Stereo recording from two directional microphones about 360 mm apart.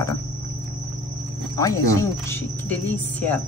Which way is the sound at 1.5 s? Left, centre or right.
Centre.